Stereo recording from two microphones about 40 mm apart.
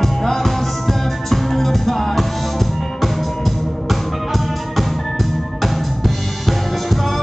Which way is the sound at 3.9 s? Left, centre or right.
Centre.